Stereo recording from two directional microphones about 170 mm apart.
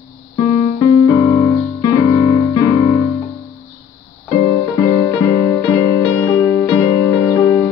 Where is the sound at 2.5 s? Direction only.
25° left (ahead or behind).